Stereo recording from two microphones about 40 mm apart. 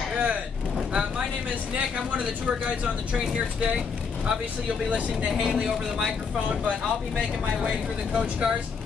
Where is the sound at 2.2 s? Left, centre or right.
Right.